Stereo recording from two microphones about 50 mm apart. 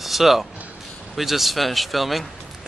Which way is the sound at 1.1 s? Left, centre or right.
Centre.